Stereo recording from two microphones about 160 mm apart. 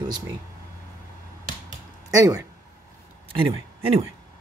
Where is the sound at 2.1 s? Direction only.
20° right (ahead or behind).